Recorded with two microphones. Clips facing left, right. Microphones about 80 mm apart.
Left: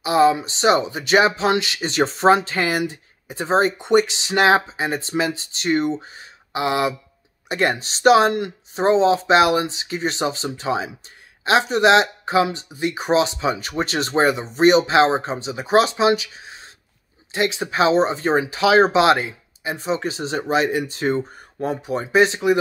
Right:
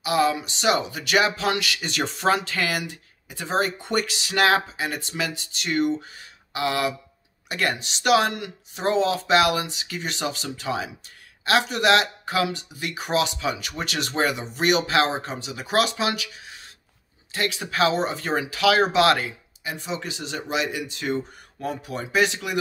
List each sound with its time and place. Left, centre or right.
0.0 s speech: left